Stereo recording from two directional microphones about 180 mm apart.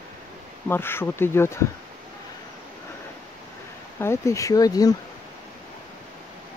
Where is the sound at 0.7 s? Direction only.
10° left (ahead or behind).